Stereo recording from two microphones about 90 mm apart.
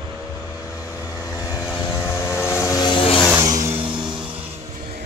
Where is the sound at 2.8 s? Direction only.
75° left (ahead or behind).